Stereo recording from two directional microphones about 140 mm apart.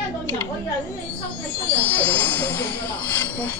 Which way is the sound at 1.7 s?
15° left (ahead or behind).